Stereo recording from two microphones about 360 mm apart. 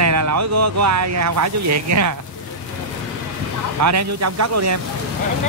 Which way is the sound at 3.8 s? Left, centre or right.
Right.